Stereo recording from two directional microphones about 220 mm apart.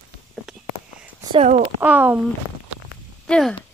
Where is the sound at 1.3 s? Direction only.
30° right (ahead or behind).